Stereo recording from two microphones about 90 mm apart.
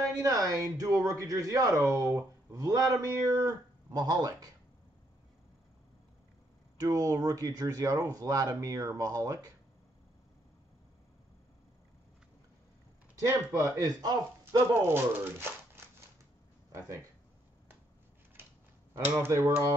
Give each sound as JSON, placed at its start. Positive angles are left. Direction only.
{"t": 0.2, "sound": "speech", "side_deg": -40}
{"t": 6.8, "sound": "speech", "side_deg": -40}
{"t": 13.2, "sound": "speech", "side_deg": -40}
{"t": 14.4, "sound": "speech", "side_deg": -25}
{"t": 18.9, "sound": "speech", "side_deg": -25}